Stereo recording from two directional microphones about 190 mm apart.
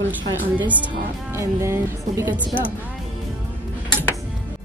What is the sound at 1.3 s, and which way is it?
Speech, 15° right (ahead or behind).